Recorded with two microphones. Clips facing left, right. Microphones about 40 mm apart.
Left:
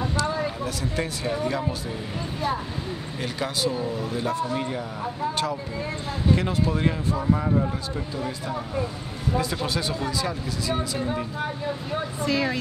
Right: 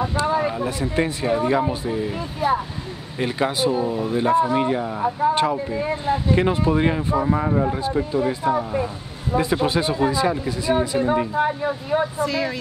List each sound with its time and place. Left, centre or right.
0.1 s speech: right
2.1 s speech: centre
3.2 s speech: right
12.2 s speech: centre